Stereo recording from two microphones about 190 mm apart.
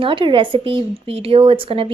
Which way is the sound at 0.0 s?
25° right (ahead or behind).